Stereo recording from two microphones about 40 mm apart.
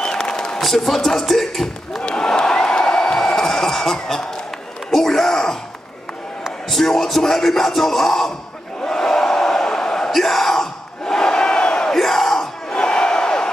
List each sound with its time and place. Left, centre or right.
0.0 s a sound: centre
0.6 s speech: centre
2.0 s a sound: centre
4.9 s groan: centre
6.7 s speech: centre
8.8 s crowd: centre
10.1 s battle cry: centre
12.0 s crowd: centre
12.7 s crowd: left